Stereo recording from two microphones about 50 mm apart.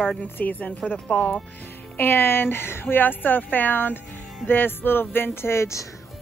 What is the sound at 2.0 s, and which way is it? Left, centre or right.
Speech, left.